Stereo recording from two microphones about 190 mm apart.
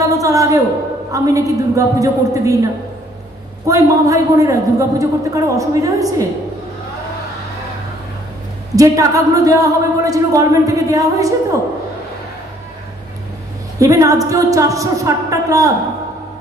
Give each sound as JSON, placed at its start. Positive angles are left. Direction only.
{"t": 0.0, "sound": "a man's voice", "side_deg": -15}
{"t": 3.6, "sound": "speech", "side_deg": -15}
{"t": 8.7, "sound": "speech", "side_deg": -15}
{"t": 13.7, "sound": "speech", "side_deg": -15}